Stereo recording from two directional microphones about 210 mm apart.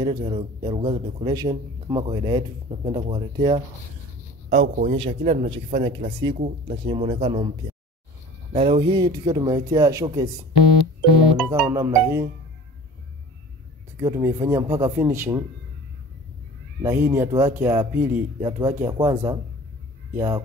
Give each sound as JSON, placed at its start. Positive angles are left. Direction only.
{"t": 0.2, "sound": "a man's voice", "side_deg": -25}
{"t": 8.5, "sound": "a man's voice", "side_deg": -25}
{"t": 11.4, "sound": "speech", "side_deg": -10}
{"t": 13.9, "sound": "speech", "side_deg": -15}
{"t": 16.8, "sound": "speech", "side_deg": -10}